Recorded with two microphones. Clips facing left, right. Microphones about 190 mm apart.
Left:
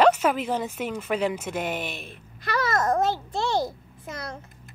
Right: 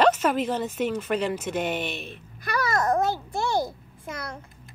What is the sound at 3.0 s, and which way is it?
Speech, 25° left (ahead or behind).